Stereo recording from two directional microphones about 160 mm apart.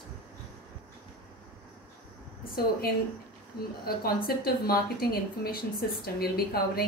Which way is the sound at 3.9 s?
70° left (ahead or behind).